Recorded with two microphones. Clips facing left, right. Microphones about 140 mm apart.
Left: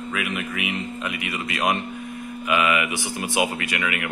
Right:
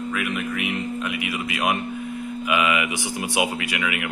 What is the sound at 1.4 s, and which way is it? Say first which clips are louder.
Speech: left 1 dB; 10° right (ahead or behind).